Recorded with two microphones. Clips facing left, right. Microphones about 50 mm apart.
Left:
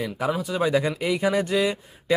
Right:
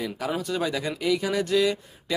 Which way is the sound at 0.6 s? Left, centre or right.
Left.